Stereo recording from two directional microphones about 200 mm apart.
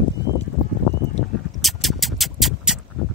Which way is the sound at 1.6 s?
Centre (ahead or behind).